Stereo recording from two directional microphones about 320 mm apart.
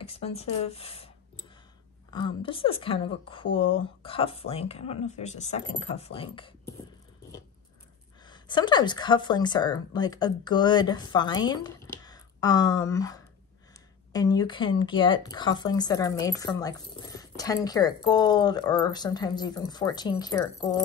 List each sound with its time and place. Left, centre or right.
0.0 s speech: centre
8.3 s speech: centre